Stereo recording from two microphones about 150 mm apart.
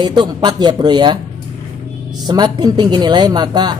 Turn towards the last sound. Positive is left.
turn(degrees=-30)  # may be behind; listen again after turning